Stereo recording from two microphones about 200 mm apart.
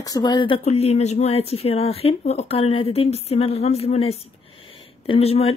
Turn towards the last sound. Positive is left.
turn(degrees=30)  # may be behind; listen again after turning